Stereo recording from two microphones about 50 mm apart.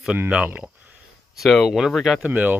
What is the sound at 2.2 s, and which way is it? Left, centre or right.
Speech, right.